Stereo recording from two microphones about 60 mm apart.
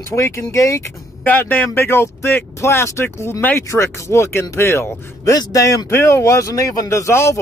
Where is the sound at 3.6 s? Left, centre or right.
Left.